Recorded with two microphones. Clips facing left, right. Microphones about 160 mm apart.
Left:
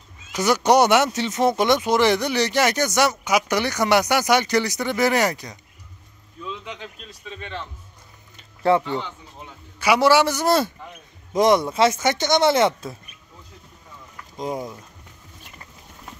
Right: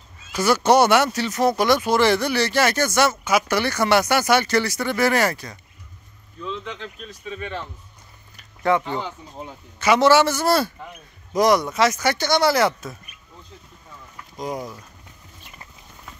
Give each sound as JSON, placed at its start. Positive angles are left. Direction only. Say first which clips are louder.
{"t": 0.3, "sound": "speech", "louder": "right 1 dB", "side_deg": 15}
{"t": 8.4, "sound": "a sound", "louder": "left 2 dB", "side_deg": 30}
{"t": 9.8, "sound": "speech", "louder": "right 1 dB", "side_deg": 10}
{"t": 14.3, "sound": "speech", "louder": "left 1 dB", "side_deg": 25}